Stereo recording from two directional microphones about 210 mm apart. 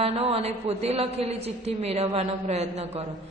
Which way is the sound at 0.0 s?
30° right (ahead or behind).